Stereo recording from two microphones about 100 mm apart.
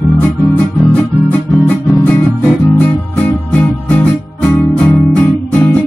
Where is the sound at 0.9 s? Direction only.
15° left (ahead or behind).